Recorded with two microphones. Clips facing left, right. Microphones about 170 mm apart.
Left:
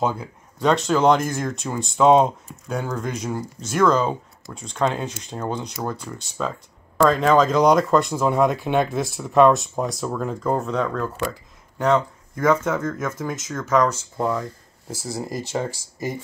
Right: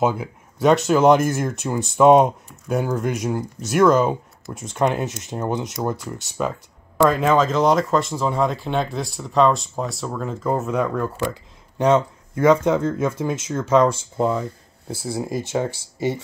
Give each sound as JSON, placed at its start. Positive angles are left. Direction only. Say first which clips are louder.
{"t": 0.0, "sound": "speech", "louder": "right 3 dB", "side_deg": -10}
{"t": 3.7, "sound": "speech", "louder": "right 3 dB", "side_deg": -15}
{"t": 11.8, "sound": "speech", "louder": "right 2 dB", "side_deg": -25}
{"t": 15.6, "sound": "speech", "louder": "right 4 dB", "side_deg": -70}